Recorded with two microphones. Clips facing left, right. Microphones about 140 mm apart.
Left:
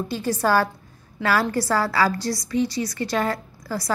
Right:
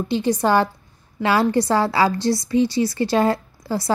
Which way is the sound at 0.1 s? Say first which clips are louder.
Right 3 dB; 20° right (ahead or behind).